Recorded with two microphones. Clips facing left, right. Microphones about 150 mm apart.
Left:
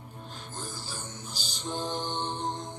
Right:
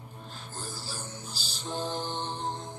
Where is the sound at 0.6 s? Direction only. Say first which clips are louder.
Even; 35° right (ahead or behind).